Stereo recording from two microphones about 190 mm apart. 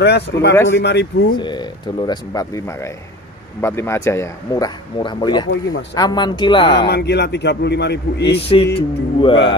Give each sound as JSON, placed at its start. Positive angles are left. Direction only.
{"t": 0.0, "sound": "a man's voice", "side_deg": 60}
{"t": 1.3, "sound": "speech", "side_deg": 25}
{"t": 6.9, "sound": "a man's voice", "side_deg": 60}
{"t": 8.3, "sound": "speech", "side_deg": 30}